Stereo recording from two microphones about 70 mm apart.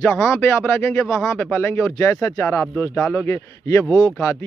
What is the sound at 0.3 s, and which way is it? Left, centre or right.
Speech, left.